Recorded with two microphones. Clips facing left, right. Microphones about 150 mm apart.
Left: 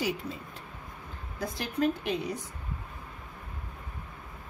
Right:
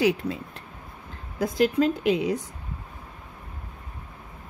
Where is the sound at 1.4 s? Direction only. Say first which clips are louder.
Right 8 dB; 90° right.